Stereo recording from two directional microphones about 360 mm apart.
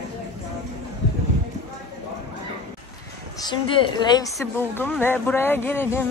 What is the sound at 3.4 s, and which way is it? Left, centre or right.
A woman's voice, centre.